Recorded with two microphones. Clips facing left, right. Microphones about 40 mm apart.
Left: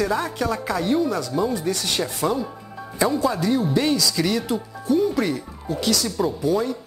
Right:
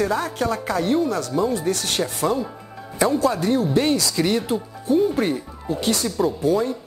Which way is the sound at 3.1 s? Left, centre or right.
Right.